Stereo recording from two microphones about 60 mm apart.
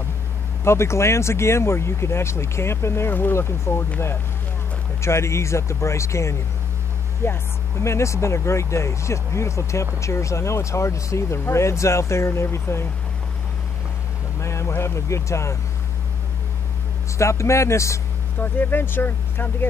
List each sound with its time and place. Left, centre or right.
0.7 s speech: left
3.3 s speech: left
5.0 s speech: left
14.4 s speech: left
17.2 s speech: left
18.4 s speech: left